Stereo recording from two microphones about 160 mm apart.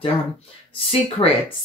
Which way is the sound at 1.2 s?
25° left (ahead or behind).